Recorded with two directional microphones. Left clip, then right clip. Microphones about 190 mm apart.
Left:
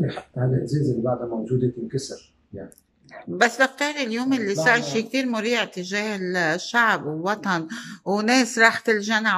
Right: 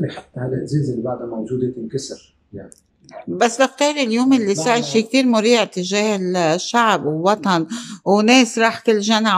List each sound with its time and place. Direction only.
0.3 s speech: centre (ahead or behind)
3.3 s a man's voice: 15° right (ahead or behind)